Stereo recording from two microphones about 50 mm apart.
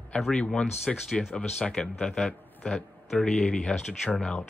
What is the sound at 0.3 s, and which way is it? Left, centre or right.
A man's voice, centre.